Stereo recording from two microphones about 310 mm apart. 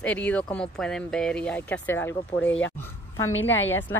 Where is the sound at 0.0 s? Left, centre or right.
Centre.